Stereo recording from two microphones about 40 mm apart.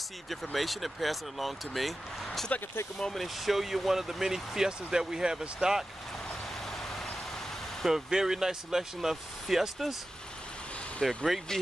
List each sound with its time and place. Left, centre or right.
0.3 s speech: centre
3.4 s speech: centre
7.8 s speech: centre
11.0 s speech: centre